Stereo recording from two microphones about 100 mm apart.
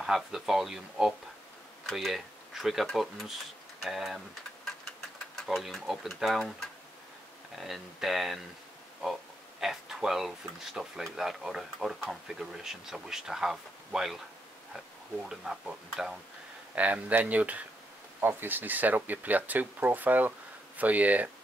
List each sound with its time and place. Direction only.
0.0 s speech: 5° right (ahead or behind)
5.5 s speech: centre (ahead or behind)
15.2 s speech: 5° right (ahead or behind)